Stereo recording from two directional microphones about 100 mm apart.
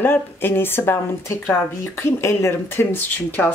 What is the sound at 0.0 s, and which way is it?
Speech, 20° left (ahead or behind).